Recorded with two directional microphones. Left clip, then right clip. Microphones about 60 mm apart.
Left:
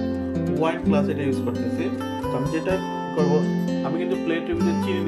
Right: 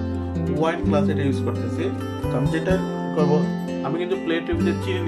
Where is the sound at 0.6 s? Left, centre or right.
Centre.